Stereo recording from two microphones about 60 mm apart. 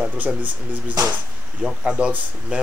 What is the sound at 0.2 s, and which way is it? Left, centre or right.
Speech, right.